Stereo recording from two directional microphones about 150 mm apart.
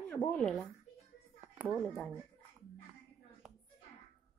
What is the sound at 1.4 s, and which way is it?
Speech, 10° right (ahead or behind).